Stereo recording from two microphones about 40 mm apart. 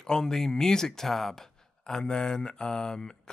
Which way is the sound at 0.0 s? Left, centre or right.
Centre.